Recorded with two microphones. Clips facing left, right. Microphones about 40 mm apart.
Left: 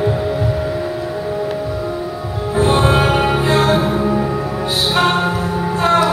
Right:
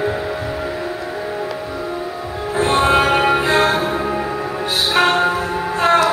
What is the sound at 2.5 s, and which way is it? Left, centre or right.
Music, centre.